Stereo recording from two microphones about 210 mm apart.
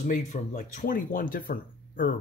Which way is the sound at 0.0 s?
35° left (ahead or behind).